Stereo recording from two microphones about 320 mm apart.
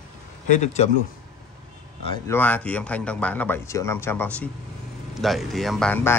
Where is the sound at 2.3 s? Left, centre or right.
Centre.